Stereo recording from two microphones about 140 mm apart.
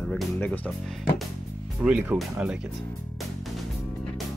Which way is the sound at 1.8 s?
10° right (ahead or behind).